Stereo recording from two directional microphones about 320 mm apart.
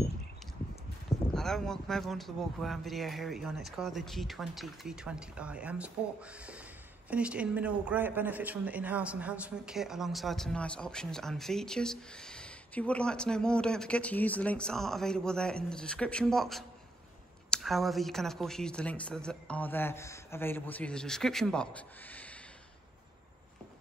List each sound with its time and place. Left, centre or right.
1.3 s speech: centre
7.1 s speech: centre